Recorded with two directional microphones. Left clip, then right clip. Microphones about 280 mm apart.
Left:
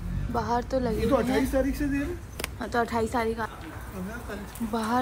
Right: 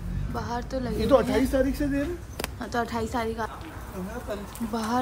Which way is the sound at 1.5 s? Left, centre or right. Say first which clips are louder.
Right 2 dB; right.